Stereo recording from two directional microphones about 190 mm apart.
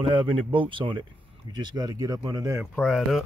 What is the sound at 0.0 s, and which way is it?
Speech, 25° right (ahead or behind).